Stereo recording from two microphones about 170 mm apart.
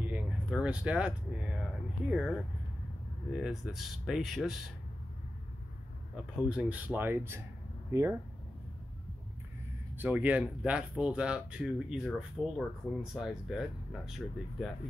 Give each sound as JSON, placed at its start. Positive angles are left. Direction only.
{"t": 0.0, "sound": "a sound", "side_deg": -10}
{"t": 3.3, "sound": "speech", "side_deg": -5}
{"t": 6.3, "sound": "speech", "side_deg": -5}
{"t": 9.9, "sound": "speech", "side_deg": -10}